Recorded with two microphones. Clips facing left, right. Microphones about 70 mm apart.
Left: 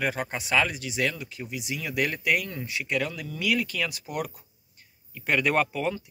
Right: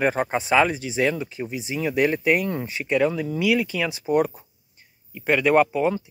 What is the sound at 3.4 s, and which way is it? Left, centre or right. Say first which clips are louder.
Speech: right 4 dB; centre.